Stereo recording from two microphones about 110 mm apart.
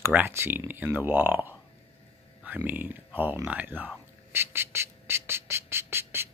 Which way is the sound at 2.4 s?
15° right (ahead or behind).